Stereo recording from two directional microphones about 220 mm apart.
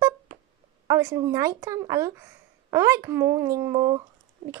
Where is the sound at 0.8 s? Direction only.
15° right (ahead or behind).